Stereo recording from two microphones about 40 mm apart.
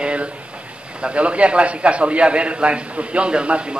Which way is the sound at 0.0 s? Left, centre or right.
Right.